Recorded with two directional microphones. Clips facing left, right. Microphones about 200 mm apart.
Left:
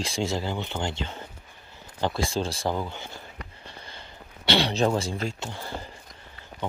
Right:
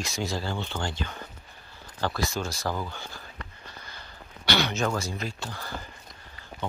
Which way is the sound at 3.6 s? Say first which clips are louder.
Left 2 dB; 30° left (ahead or behind).